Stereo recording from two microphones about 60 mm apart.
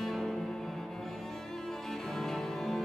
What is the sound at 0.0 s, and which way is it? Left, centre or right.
Cello, centre.